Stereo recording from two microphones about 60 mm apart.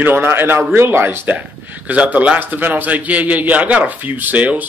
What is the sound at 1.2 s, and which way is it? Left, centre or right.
A man's voice, right.